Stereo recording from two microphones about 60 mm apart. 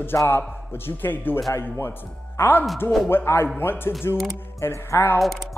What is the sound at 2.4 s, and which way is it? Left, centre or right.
Speech, left.